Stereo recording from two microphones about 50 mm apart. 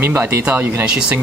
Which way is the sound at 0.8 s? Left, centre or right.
Right.